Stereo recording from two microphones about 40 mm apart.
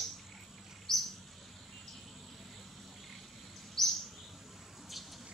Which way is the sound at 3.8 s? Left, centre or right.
Centre.